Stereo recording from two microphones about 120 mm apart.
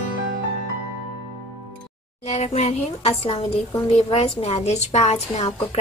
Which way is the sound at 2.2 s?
70° left (ahead or behind).